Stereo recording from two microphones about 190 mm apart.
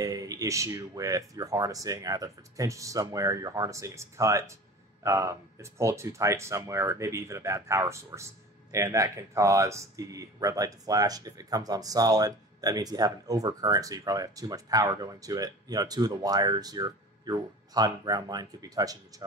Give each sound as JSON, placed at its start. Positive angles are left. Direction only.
{"t": 0.0, "sound": "speech", "side_deg": -20}